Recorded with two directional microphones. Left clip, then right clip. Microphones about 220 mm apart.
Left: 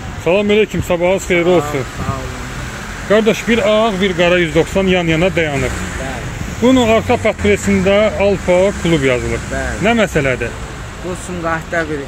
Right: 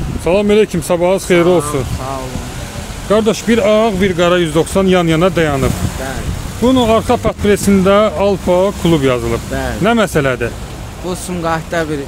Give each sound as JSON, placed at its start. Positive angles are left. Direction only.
{"t": 0.2, "sound": "speech", "side_deg": -10}
{"t": 3.1, "sound": "speech", "side_deg": -10}
{"t": 3.4, "sound": "speech", "side_deg": -25}
{"t": 6.6, "sound": "speech", "side_deg": -5}
{"t": 7.2, "sound": "speech", "side_deg": -25}
{"t": 11.4, "sound": "speech", "side_deg": -50}